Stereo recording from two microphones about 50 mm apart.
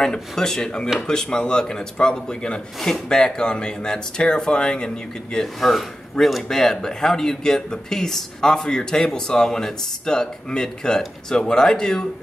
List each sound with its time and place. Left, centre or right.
0.0 s speech: centre